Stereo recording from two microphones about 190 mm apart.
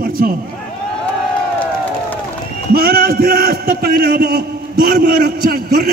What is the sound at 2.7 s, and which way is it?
A man's voice, 50° right (ahead or behind).